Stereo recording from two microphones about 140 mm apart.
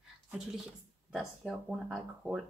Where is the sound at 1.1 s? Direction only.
Centre (ahead or behind).